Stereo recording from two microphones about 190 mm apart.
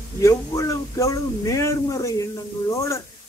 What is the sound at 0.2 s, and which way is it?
Speech, 15° left (ahead or behind).